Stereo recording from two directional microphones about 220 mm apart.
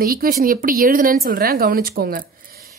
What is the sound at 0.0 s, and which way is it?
A woman's voice, 40° right (ahead or behind).